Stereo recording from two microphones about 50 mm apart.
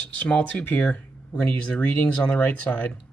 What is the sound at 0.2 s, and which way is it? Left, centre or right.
Speech, left.